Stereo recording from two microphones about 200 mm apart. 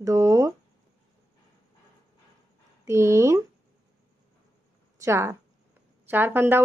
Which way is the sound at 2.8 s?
15° right (ahead or behind).